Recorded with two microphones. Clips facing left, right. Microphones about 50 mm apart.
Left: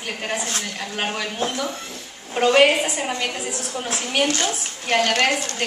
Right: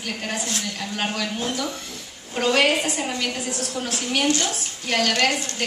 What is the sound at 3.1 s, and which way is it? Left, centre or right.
A woman's voice, left.